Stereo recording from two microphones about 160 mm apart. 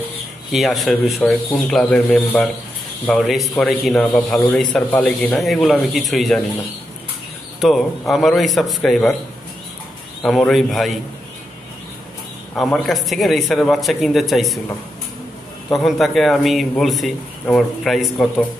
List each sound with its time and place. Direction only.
0.5 s speech: centre (ahead or behind)
7.6 s speech: centre (ahead or behind)
10.2 s speech: centre (ahead or behind)
12.5 s speech: centre (ahead or behind)
15.7 s speech: centre (ahead or behind)